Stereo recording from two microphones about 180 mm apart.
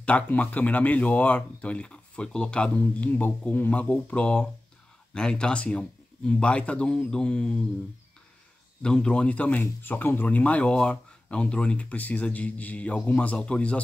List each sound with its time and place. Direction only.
0.0 s speech: 10° left (ahead or behind)
8.8 s speech: 5° left (ahead or behind)